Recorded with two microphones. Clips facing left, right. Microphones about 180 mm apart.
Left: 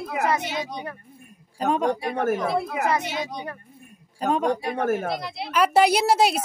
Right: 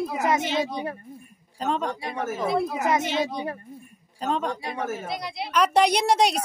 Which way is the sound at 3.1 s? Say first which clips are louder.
Right 4 dB; 15° left (ahead or behind).